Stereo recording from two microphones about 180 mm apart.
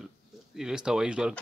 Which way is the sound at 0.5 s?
5° right (ahead or behind).